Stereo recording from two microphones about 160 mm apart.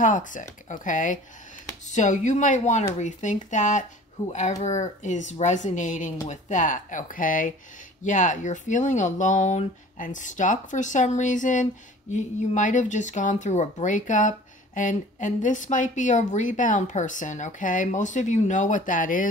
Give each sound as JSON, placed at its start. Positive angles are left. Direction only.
{"t": 0.0, "sound": "speech", "side_deg": 55}